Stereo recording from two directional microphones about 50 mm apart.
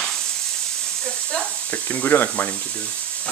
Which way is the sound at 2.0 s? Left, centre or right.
Left.